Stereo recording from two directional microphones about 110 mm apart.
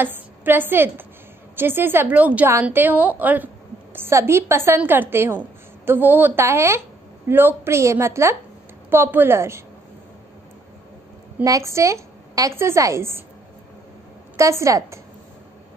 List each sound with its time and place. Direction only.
0.0 s a woman's voice: 20° right (ahead or behind)
11.4 s a woman's voice: 30° right (ahead or behind)
14.3 s a woman's voice: 25° right (ahead or behind)